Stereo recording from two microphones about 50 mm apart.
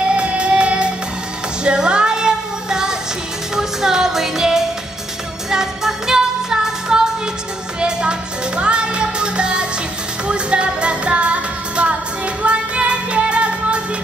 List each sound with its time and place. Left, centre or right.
0.1 s music: right